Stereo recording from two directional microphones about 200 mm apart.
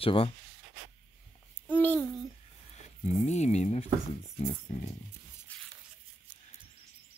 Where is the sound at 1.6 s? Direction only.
10° left (ahead or behind).